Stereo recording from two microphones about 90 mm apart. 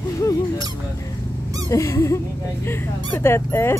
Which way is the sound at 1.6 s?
35° left (ahead or behind).